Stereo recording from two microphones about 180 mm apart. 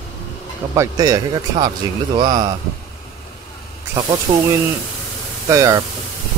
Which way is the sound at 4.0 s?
15° right (ahead or behind).